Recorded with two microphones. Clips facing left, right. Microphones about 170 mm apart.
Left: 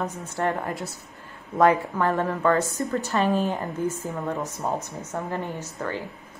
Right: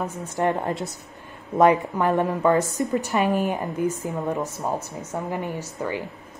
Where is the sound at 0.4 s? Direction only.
20° right (ahead or behind).